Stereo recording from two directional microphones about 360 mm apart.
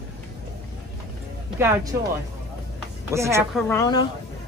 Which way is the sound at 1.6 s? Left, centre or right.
Centre.